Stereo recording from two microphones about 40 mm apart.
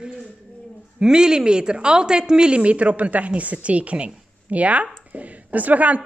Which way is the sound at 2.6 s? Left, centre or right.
Right.